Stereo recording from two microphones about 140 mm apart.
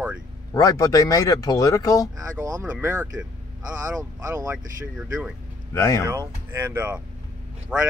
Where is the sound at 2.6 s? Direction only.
10° right (ahead or behind).